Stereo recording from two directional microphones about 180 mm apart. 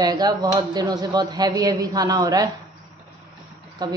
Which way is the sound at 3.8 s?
20° right (ahead or behind).